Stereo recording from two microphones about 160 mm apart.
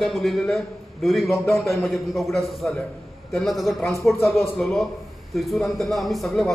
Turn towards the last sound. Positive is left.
turn(degrees=0)  # may be behind; listen again after turning